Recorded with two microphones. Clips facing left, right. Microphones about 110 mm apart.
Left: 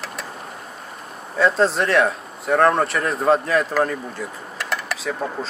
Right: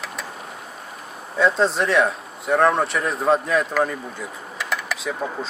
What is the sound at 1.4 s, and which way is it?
Speech, centre (ahead or behind).